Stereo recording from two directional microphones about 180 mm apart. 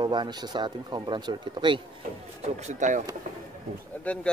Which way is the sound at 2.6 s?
40° right (ahead or behind).